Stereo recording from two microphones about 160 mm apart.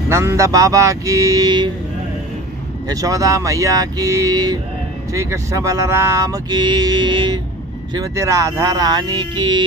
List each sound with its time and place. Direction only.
0.1 s speech: 15° right (ahead or behind)
2.9 s speech: 20° right (ahead or behind)